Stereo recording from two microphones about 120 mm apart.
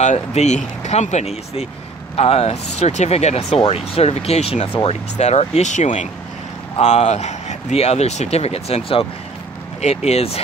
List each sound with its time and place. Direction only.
0.0 s speech: 70° left (ahead or behind); by 6.0 s 90° left
6.8 s speech: 65° left (ahead or behind)
9.8 s speech: 65° left (ahead or behind)